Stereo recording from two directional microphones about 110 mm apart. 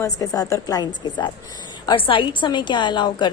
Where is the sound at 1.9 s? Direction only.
50° left (ahead or behind).